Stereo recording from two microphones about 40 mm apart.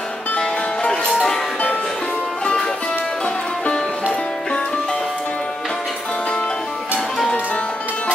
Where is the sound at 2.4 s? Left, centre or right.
Centre.